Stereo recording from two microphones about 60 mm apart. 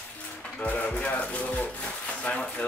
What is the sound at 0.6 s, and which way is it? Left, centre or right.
Music, left.